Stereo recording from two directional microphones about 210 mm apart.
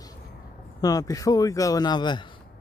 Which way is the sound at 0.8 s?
15° left (ahead or behind).